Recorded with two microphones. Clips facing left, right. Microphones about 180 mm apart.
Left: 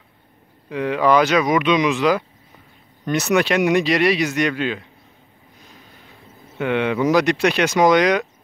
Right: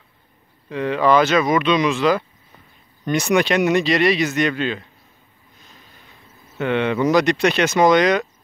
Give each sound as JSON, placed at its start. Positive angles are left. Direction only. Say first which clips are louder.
{"t": 0.7, "sound": "speech", "louder": "even", "side_deg": 10}
{"t": 6.6, "sound": "speech", "louder": "even", "side_deg": 10}